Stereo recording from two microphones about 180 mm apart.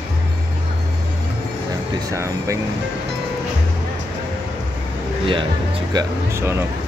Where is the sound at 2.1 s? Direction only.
15° right (ahead or behind).